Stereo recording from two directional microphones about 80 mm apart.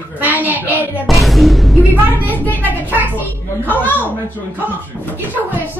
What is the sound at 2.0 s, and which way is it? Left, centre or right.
Speech, right.